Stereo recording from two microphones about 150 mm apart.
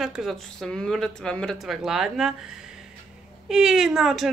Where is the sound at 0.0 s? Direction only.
5° right (ahead or behind).